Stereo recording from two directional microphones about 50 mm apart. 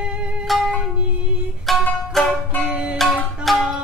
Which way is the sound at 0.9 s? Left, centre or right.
Right.